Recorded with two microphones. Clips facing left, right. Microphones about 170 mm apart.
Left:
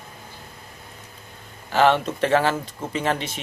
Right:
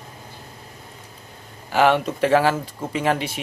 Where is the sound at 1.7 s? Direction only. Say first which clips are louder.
Right 1 dB; 10° right (ahead or behind).